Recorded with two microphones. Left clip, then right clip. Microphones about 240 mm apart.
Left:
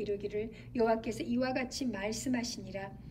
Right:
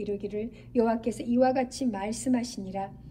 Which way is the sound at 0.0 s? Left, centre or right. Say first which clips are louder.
Right 3 dB; centre.